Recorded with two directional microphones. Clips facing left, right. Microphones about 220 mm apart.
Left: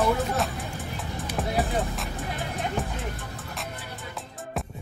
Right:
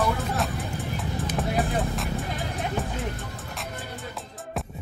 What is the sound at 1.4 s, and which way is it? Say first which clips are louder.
Music: even; centre (ahead or behind).